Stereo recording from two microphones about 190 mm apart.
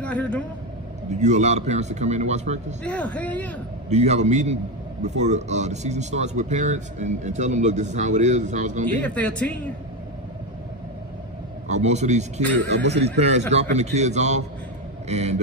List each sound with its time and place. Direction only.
0.0 s speech: 5° left (ahead or behind)
1.1 s speech: 40° right (ahead or behind)
2.8 s speech: 5° left (ahead or behind)
3.9 s speech: 35° right (ahead or behind)
9.0 s speech: 5° left (ahead or behind)
11.7 s speech: 35° right (ahead or behind)